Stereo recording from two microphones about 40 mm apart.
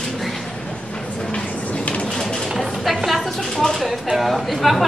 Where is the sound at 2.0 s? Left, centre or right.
Centre.